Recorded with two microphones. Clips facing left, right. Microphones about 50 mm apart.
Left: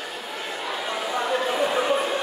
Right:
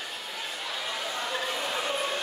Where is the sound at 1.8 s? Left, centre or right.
Centre.